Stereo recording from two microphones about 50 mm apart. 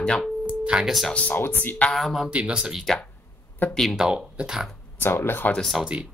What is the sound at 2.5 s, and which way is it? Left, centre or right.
Speech, centre.